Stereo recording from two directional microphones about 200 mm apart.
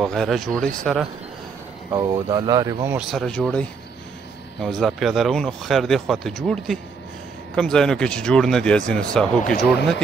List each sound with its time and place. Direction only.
0.0 s speech: centre (ahead or behind)
1.9 s speech: 15° right (ahead or behind)
3.0 s speech: centre (ahead or behind)